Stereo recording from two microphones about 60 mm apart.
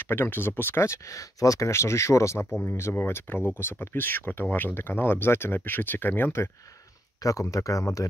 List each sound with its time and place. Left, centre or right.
0.0 s speech: left
0.8 s speech: left
1.7 s speech: left
2.6 s speech: left
7.2 s speech: left